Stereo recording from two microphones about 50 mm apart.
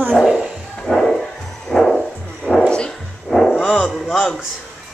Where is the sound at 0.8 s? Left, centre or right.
Centre.